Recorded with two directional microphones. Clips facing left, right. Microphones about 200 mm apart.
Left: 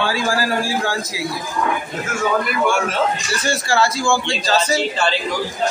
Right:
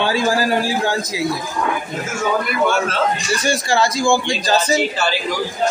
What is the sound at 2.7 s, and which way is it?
Speech, 15° left (ahead or behind).